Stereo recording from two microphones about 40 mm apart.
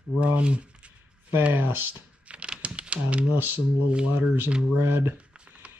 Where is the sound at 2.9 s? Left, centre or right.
Right.